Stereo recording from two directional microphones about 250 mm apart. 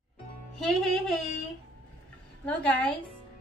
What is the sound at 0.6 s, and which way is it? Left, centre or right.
Speech, centre.